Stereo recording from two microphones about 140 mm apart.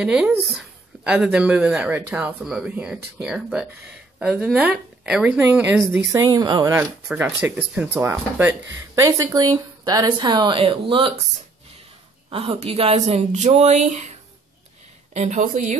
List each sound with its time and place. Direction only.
0.0 s speech: 5° right (ahead or behind)
5.9 s speech: 25° right (ahead or behind)
7.2 s speech: 15° right (ahead or behind); by 11.1 s 35° right (ahead or behind)
12.3 s speech: 45° right (ahead or behind)
15.1 s a woman's voice: 60° right (ahead or behind)